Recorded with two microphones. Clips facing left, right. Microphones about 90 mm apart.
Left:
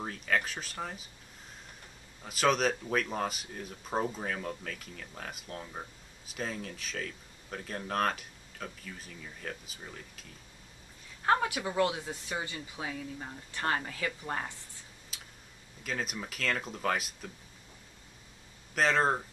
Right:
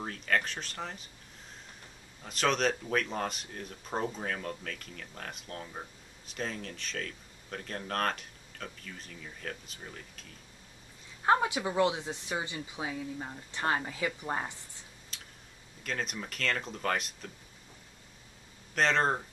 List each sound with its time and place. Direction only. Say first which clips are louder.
0.0 s speech: even; 5° left (ahead or behind)
2.2 s speech: left 1 dB; 5° left (ahead or behind)
11.2 s speech: right 2 dB; 20° right (ahead or behind)
15.1 s tick-tock: even; 5° left (ahead or behind)
15.8 s speech: even; 5° left (ahead or behind)
18.8 s speech: even; 5° left (ahead or behind)